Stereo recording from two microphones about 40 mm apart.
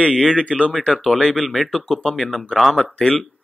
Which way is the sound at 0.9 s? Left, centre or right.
Centre.